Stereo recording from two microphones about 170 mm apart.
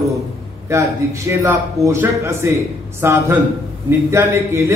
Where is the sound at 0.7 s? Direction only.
15° right (ahead or behind).